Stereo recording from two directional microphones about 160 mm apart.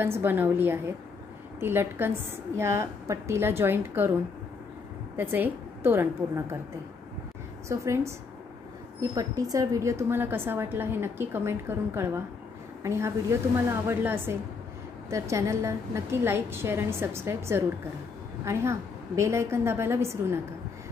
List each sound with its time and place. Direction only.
0.0 s a woman's voice: 15° right (ahead or behind)
5.1 s a woman's voice: 10° right (ahead or behind)
7.6 s a woman's voice: 20° right (ahead or behind)
9.1 s a woman's voice: 20° right (ahead or behind)